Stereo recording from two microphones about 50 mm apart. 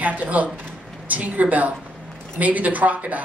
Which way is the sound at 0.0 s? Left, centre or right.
Right.